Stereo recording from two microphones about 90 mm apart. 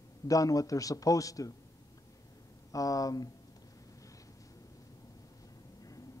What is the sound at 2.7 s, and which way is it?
Speech, 40° left (ahead or behind).